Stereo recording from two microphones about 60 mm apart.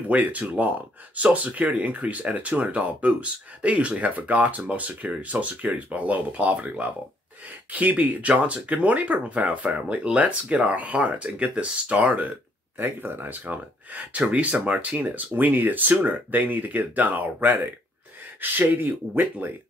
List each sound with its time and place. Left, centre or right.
0.1 s speech: right